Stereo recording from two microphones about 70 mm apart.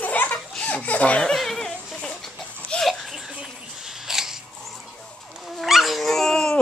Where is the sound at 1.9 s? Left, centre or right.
Centre.